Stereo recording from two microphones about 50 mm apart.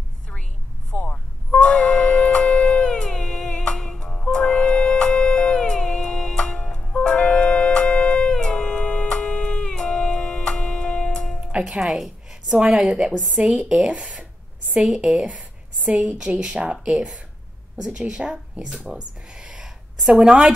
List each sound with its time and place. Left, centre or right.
0.9 s vehicle: left
1.7 s music: centre
11.6 s a woman's voice: centre